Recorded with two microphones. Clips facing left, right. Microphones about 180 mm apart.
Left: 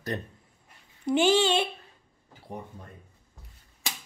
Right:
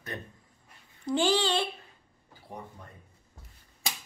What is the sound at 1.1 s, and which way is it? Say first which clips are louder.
Speech: left 4 dB; 20° left (ahead or behind).